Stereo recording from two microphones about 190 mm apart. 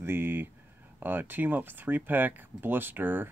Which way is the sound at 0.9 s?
10° right (ahead or behind).